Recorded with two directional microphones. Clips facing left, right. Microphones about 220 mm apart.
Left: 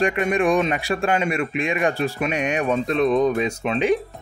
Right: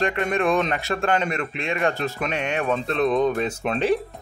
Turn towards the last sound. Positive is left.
turn(degrees=0)  # may be behind; listen again after turning